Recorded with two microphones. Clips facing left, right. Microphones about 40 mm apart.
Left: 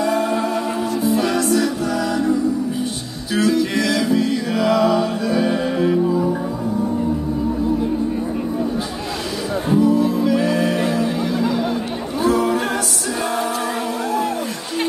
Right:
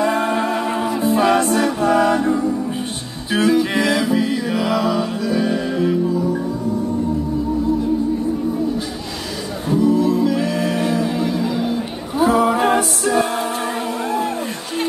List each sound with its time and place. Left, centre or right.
0.0 s music: right; by 5.1 s centre
5.3 s music: centre
9.8 s music: centre
12.2 s music: centre
14.0 s a sound: right